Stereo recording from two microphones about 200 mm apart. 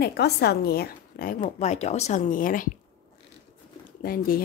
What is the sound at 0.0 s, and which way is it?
A woman's voice, 55° left (ahead or behind).